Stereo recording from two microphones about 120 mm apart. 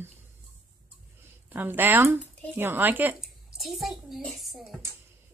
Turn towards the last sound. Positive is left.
turn(degrees=0)  # may be behind; listen again after turning